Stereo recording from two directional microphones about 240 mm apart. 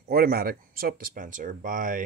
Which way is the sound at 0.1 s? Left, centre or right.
Right.